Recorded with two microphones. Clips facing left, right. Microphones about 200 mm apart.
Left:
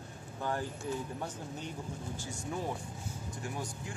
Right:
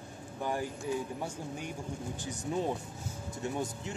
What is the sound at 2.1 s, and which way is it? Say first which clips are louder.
Speech: right 5 dB; 20° right (ahead or behind).